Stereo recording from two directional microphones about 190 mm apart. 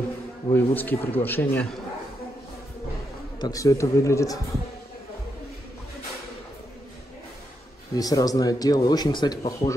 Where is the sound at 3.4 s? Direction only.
15° left (ahead or behind).